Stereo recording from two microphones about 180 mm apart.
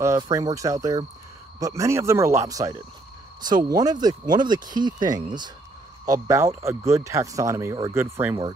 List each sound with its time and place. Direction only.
0.0 s speech: 15° right (ahead or behind)